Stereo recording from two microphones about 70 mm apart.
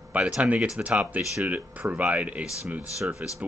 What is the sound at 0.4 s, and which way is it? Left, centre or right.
Speech, centre.